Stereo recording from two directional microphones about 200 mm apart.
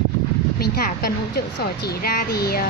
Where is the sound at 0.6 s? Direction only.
50° left (ahead or behind).